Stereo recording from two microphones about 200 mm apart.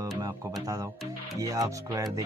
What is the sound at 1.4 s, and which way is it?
Speech, 15° right (ahead or behind).